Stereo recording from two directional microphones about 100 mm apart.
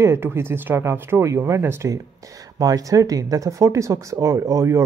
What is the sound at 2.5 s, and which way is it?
Speech, 35° right (ahead or behind).